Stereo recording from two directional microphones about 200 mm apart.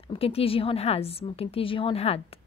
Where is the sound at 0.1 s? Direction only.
30° left (ahead or behind).